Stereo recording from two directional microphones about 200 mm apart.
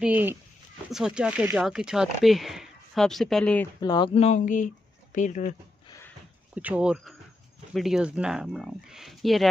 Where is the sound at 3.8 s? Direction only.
20° left (ahead or behind); by 5.5 s 40° left (ahead or behind).